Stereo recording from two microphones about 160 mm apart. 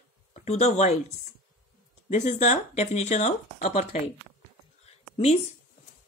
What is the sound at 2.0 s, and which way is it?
Speech, 50° left (ahead or behind).